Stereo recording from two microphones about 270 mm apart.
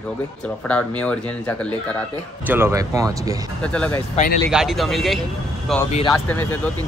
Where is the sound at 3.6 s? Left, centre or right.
Centre.